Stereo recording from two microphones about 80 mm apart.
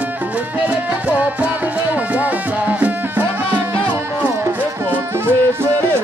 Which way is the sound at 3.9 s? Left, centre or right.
Right.